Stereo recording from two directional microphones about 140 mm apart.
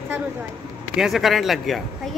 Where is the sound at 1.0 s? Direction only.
Centre (ahead or behind).